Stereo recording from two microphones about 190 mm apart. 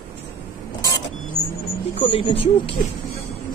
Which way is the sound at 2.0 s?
30° left (ahead or behind).